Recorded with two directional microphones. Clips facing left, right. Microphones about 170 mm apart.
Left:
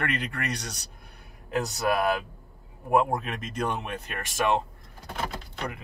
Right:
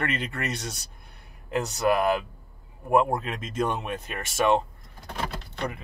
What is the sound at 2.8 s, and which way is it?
Speech, centre (ahead or behind).